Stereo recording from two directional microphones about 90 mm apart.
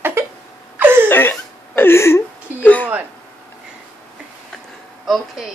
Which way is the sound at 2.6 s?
20° left (ahead or behind).